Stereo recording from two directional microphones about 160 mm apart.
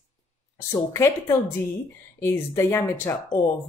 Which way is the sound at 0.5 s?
15° left (ahead or behind).